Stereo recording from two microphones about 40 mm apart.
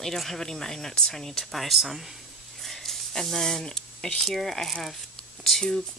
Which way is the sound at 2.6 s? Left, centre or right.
Centre.